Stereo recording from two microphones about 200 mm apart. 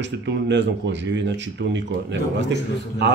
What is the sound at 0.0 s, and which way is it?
A man's voice, 60° right (ahead or behind).